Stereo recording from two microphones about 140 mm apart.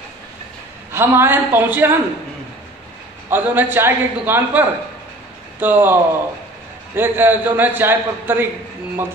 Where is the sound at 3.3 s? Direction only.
15° right (ahead or behind).